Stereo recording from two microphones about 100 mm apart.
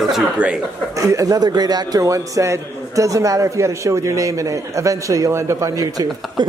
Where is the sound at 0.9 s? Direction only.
35° right (ahead or behind).